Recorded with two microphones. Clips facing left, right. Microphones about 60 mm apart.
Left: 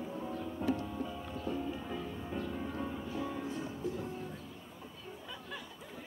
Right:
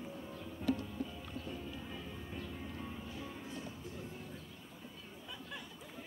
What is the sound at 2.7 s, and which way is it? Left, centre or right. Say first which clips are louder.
Music: left 7 dB; left.